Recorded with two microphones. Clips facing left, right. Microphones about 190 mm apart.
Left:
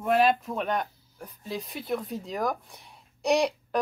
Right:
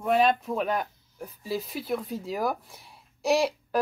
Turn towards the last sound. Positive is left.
turn(degrees=0)  # may be behind; listen again after turning